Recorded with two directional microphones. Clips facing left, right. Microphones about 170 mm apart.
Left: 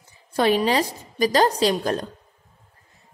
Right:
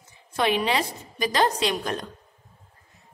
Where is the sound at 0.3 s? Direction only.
35° left (ahead or behind).